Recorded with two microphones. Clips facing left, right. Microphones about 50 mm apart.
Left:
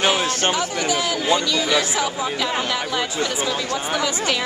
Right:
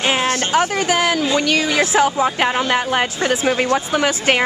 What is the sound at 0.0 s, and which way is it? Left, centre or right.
A woman's voice, right.